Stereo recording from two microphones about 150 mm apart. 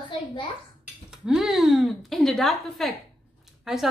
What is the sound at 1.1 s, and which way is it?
A woman's voice, 5° right (ahead or behind).